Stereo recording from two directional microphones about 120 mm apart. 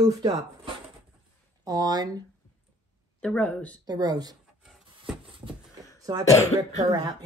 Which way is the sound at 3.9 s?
35° right (ahead or behind).